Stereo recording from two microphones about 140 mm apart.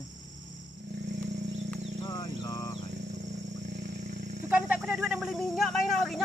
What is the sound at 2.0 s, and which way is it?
Speech, 25° left (ahead or behind).